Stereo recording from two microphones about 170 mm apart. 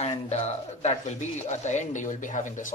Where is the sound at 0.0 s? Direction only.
40° left (ahead or behind).